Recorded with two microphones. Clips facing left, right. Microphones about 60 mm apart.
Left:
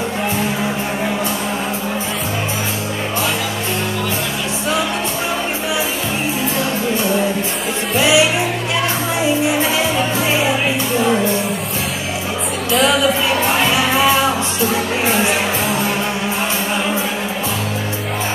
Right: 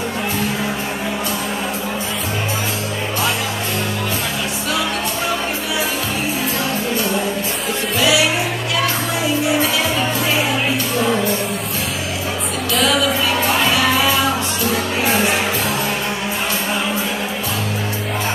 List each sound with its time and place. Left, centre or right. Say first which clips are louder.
8.0 s music: left 3 dB; left
12.7 s music: left 3 dB; centre
13.4 s music: left 1 dB; left